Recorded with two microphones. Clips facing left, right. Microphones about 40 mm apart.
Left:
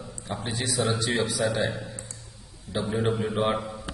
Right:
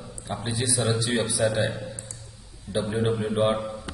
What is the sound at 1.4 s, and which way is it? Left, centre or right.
Speech, right.